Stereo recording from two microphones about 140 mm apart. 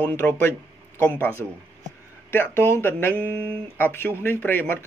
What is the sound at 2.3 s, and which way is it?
Speech, 15° left (ahead or behind).